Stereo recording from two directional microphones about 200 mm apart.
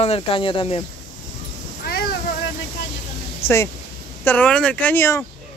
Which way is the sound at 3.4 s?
10° left (ahead or behind).